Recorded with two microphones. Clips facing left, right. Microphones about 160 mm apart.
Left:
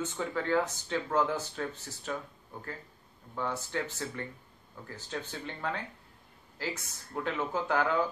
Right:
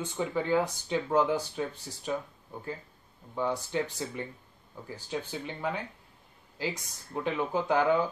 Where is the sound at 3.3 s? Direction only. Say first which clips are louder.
Right 4 dB; 15° right (ahead or behind).